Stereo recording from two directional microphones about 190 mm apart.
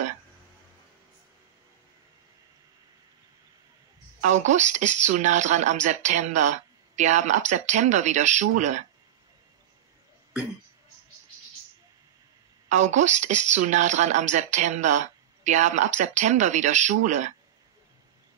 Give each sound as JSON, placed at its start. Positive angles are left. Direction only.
{"t": 4.2, "sound": "speech", "side_deg": -40}
{"t": 12.6, "sound": "speech", "side_deg": -40}